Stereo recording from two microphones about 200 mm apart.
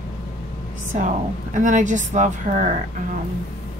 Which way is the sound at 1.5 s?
40° right (ahead or behind).